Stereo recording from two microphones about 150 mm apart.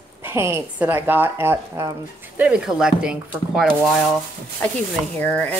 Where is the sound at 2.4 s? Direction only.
5° right (ahead or behind).